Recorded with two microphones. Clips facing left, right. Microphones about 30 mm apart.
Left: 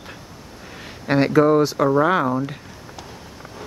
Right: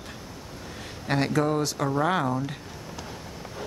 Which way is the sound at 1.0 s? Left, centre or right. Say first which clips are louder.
Left 9 dB; centre.